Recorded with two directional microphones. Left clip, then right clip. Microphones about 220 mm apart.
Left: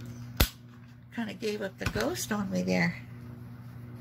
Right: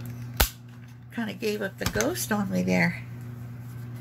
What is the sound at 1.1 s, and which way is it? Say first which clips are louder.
Speech: right 4 dB; 10° right (ahead or behind).